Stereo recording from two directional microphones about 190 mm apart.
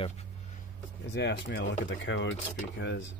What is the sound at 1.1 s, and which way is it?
Speech, 65° left (ahead or behind).